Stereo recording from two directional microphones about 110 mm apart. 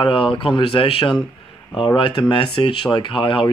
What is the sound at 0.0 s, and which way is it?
Speech, 50° left (ahead or behind).